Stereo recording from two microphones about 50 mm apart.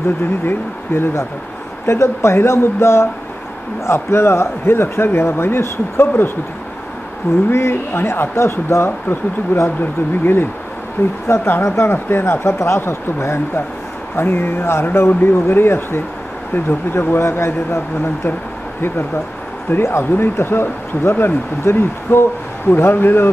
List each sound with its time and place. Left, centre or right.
0.5 s speech: left
7.4 s speech: left
11.3 s speech: left
19.7 s speech: left